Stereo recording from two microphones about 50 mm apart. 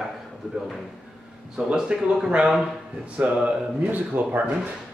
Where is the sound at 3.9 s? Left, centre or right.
Right.